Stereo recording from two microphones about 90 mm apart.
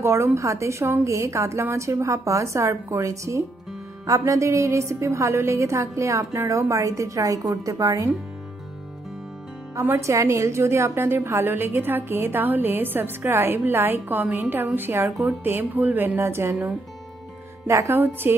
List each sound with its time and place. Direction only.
0.0 s a woman's voice: 30° right (ahead or behind)
9.8 s a woman's voice: 30° right (ahead or behind)
17.6 s a woman's voice: 30° right (ahead or behind)